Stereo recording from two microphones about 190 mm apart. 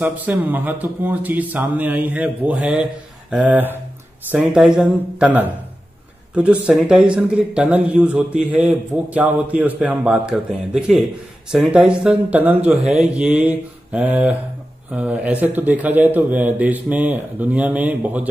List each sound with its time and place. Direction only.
0.0 s speech: 10° right (ahead or behind)